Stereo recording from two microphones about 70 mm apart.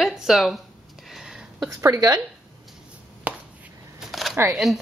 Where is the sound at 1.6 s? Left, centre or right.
Right.